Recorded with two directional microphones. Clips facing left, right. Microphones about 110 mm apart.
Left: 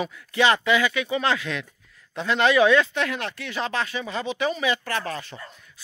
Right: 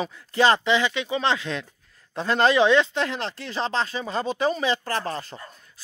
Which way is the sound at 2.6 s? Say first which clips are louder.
Even; 25° right (ahead or behind).